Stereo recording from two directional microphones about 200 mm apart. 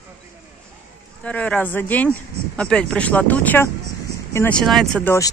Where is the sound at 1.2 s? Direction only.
5° left (ahead or behind).